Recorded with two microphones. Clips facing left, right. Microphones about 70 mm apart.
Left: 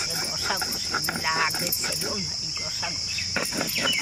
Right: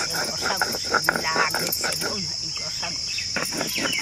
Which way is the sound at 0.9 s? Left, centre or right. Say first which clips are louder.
Right 8 dB; right.